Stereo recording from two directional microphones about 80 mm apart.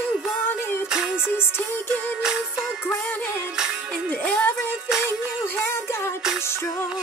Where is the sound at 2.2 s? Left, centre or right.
Centre.